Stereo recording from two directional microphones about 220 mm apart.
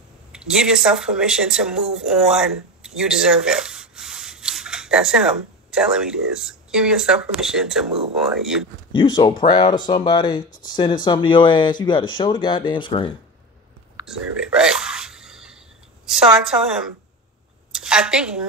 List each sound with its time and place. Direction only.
0.3 s speech: 5° right (ahead or behind)
8.9 s speech: 20° left (ahead or behind)
14.0 s a sound: 5° right (ahead or behind)
16.1 s a woman's voice: 5° right (ahead or behind)